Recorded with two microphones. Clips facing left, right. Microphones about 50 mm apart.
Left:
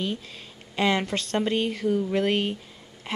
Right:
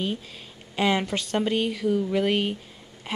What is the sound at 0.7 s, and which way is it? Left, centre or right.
Speech, centre.